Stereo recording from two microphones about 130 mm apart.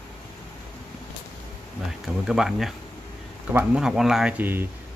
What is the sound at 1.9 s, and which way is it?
Speech, 5° right (ahead or behind).